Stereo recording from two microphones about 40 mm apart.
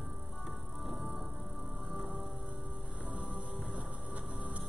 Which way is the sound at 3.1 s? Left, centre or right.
Right.